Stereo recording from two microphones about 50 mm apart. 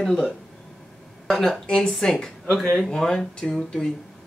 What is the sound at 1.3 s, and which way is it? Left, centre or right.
Speech, centre.